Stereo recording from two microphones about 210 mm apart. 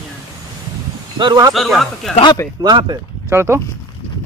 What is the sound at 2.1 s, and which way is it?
Speech, 20° left (ahead or behind).